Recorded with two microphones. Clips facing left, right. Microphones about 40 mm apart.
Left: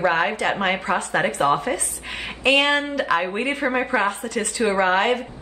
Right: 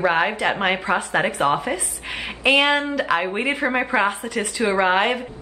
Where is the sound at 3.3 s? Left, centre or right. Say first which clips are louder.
Right 1 dB; centre.